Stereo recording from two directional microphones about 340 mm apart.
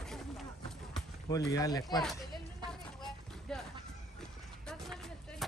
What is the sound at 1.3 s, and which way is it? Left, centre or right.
Speech, centre.